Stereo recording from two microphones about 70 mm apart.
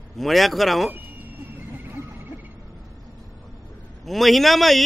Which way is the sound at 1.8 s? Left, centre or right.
Right.